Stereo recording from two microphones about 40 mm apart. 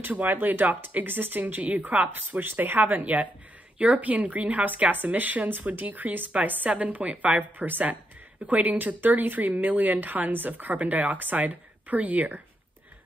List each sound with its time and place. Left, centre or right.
0.1 s speech: right
1.4 s speech: right
2.4 s speech: right
3.7 s speech: right
6.8 s speech: right
7.3 s speech: right